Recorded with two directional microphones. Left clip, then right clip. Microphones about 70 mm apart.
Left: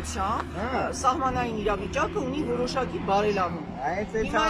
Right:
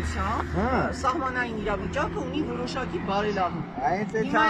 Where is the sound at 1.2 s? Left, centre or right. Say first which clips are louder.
Left 1 dB; left.